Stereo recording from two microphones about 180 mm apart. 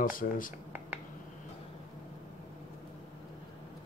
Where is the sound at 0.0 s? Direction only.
50° left (ahead or behind).